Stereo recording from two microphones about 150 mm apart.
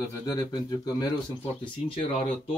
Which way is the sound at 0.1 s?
20° left (ahead or behind).